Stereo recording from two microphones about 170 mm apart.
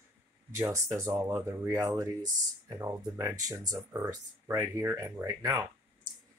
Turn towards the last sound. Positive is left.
turn(degrees=-20)  # may be behind; listen again after turning